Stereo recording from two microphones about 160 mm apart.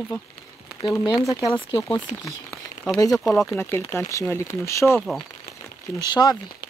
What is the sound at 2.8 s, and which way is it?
Speech, 20° left (ahead or behind).